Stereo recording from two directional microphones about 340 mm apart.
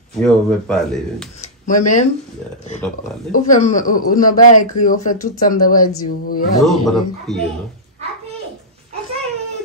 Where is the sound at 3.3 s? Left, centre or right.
Left.